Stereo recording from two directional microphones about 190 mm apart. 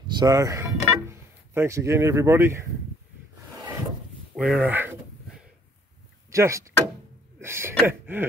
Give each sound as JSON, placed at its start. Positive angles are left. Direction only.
{"t": 0.1, "sound": "speech", "side_deg": -20}
{"t": 4.4, "sound": "a sound", "side_deg": -5}
{"t": 6.3, "sound": "speech", "side_deg": -15}
{"t": 7.3, "sound": "gasp", "side_deg": -15}